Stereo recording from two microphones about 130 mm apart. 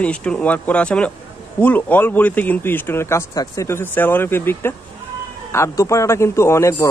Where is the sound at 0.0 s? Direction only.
10° left (ahead or behind).